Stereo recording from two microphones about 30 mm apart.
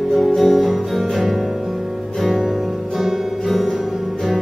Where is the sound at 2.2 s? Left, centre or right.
Centre.